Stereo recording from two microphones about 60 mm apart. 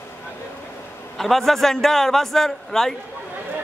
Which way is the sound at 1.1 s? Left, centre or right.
Centre.